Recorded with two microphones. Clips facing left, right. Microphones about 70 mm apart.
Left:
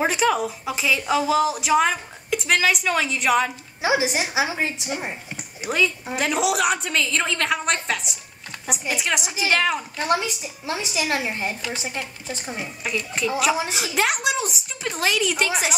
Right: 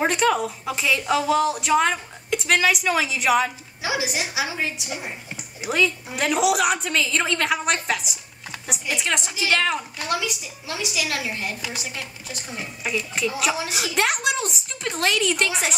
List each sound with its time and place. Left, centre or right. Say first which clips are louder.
0.0 s a woman's voice: even; centre
3.8 s speech: left 4 dB; left
5.7 s a woman's voice: even; centre
9.9 s speech: left 3 dB; left
12.8 s a woman's voice: even; centre